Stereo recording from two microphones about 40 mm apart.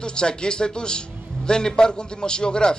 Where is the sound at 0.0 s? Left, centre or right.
Left.